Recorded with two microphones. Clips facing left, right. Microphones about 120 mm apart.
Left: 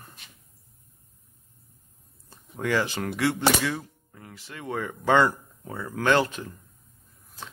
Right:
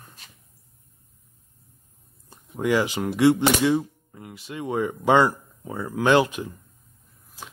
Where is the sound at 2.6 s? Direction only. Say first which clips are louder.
Right 4 dB; 15° right (ahead or behind).